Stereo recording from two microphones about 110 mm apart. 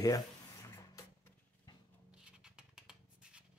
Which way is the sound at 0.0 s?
30° left (ahead or behind).